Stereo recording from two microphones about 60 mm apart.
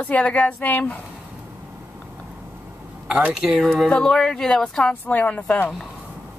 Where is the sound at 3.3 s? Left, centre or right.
Centre.